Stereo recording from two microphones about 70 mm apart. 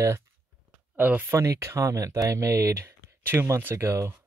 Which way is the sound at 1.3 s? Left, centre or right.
Right.